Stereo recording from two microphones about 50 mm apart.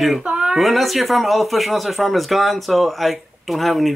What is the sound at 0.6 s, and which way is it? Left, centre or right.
Speech, centre.